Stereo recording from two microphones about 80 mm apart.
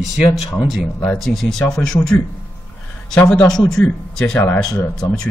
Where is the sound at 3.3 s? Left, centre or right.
Centre.